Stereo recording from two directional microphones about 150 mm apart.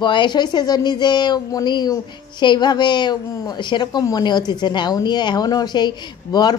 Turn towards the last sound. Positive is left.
turn(degrees=25)  # may be behind; listen again after turning